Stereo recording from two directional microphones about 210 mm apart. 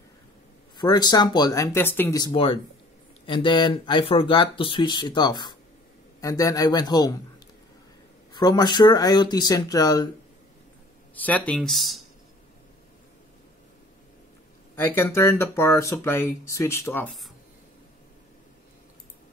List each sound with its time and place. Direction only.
0.7 s speech: 20° left (ahead or behind)
8.3 s speech: 20° left (ahead or behind)
11.2 s speech: 5° left (ahead or behind)
14.8 s speech: 10° left (ahead or behind)